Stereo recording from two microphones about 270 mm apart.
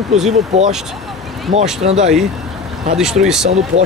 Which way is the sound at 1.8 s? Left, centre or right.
Right.